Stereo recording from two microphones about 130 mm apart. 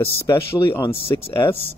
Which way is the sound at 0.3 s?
25° left (ahead or behind).